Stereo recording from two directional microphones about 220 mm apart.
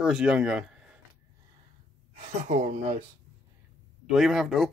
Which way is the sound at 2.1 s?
35° right (ahead or behind).